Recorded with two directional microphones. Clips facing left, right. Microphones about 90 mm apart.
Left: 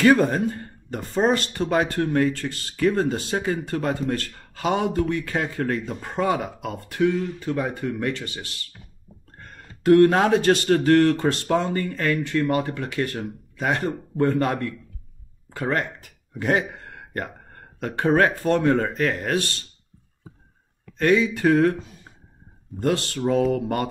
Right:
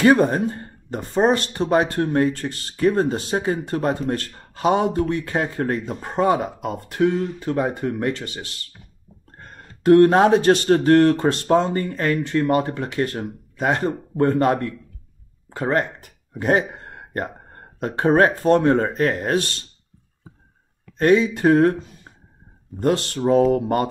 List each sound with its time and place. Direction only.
0.0 s speech: 25° right (ahead or behind)
15.5 s a sound: 25° right (ahead or behind)
17.3 s speech: 25° right (ahead or behind)
21.0 s speech: 30° right (ahead or behind)
22.8 s speech: 30° right (ahead or behind)